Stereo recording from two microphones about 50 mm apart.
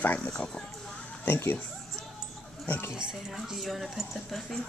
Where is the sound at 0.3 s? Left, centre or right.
Left.